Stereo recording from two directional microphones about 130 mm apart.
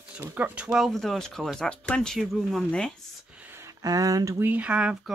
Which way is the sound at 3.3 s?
15° right (ahead or behind).